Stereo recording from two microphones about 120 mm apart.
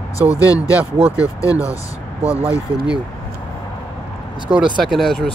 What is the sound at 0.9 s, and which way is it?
Speech, 55° right (ahead or behind).